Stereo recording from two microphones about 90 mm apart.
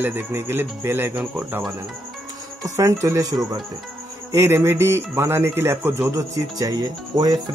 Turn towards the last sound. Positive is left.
turn(degrees=-45)  # may be behind; listen again after turning